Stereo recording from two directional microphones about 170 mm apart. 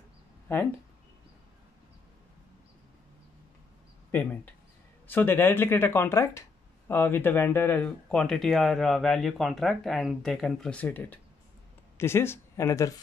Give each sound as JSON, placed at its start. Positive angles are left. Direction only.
{"t": 4.1, "sound": "speech", "side_deg": 10}